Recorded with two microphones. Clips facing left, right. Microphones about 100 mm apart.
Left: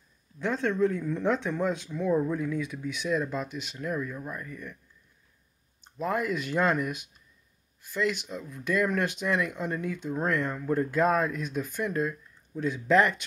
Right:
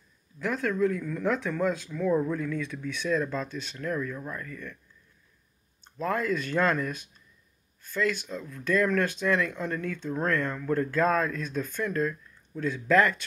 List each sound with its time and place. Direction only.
0.4 s speech: 25° left (ahead or behind)
5.9 s speech: 15° left (ahead or behind)